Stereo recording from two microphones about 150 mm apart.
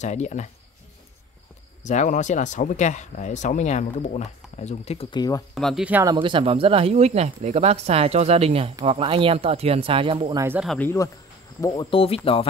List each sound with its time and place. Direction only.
0.0 s speech: 50° left (ahead or behind)
1.9 s speech: 55° left (ahead or behind)
5.5 s speech: centre (ahead or behind)
6.0 s speech: 35° right (ahead or behind)
10.3 s speech: 15° right (ahead or behind)
10.8 s speech: 15° left (ahead or behind)
11.9 s speech: 40° left (ahead or behind)